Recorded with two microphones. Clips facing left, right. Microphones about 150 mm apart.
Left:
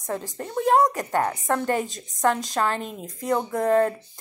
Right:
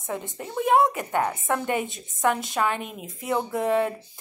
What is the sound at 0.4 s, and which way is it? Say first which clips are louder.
A woman's voice: left 1 dB; 5° right (ahead or behind).